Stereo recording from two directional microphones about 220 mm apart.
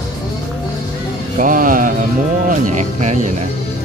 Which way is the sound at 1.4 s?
40° right (ahead or behind).